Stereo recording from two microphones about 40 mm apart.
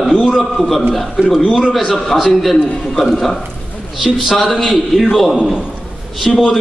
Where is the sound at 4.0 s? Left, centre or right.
Centre.